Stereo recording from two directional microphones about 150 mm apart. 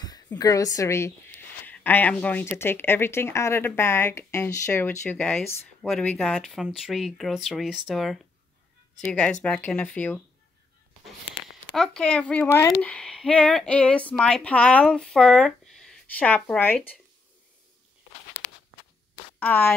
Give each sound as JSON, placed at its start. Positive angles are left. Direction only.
{"t": 0.4, "sound": "a woman's voice", "side_deg": 25}
{"t": 11.7, "sound": "speech", "side_deg": 5}
{"t": 12.9, "sound": "speech", "side_deg": 5}
{"t": 19.4, "sound": "speech", "side_deg": 15}